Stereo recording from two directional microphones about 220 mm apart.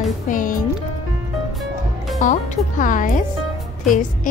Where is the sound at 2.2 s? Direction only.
35° left (ahead or behind).